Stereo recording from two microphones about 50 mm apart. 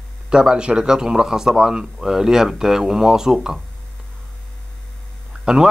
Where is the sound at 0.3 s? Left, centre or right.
Centre.